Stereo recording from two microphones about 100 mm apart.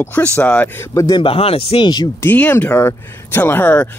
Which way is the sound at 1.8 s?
45° left (ahead or behind).